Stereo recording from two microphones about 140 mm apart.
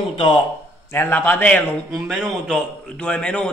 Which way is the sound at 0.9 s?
15° left (ahead or behind).